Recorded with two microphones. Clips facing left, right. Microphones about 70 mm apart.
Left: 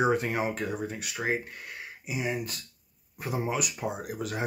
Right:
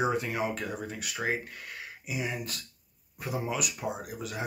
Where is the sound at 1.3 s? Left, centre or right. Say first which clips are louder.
Left 3 dB; left.